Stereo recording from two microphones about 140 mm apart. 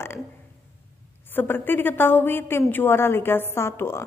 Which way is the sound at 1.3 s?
15° left (ahead or behind).